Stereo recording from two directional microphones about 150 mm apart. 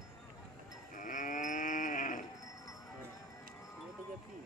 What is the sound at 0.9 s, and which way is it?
Livestock, 60° left (ahead or behind).